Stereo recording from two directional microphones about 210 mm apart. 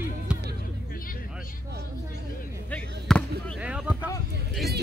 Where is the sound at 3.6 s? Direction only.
5° right (ahead or behind).